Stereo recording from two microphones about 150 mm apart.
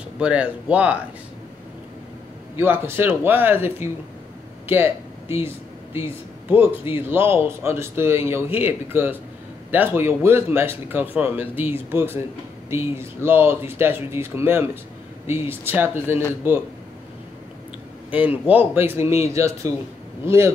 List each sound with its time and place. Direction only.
0.2 s a man's voice: 10° right (ahead or behind)
2.5 s a man's voice: 15° right (ahead or behind)
18.1 s a man's voice: 10° right (ahead or behind)